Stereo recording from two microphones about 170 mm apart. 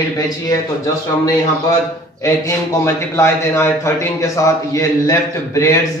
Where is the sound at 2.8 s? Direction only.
15° left (ahead or behind).